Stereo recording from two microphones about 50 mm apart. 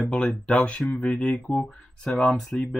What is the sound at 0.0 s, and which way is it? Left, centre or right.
Speech, left.